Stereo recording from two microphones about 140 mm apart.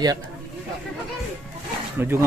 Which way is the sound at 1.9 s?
15° right (ahead or behind).